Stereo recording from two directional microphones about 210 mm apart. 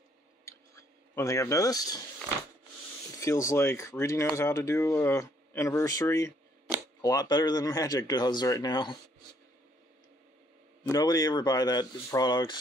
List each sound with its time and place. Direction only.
0.5 s clicking: 15° left (ahead or behind)
3.2 s speech: 15° left (ahead or behind)
10.8 s speech: 20° left (ahead or behind)